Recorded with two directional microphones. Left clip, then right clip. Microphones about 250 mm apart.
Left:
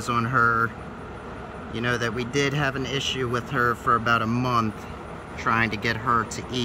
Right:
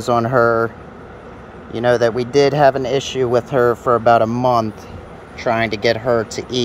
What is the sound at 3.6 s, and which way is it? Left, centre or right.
Speech, right.